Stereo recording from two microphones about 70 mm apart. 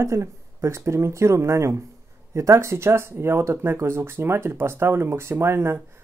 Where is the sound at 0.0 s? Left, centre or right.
Right.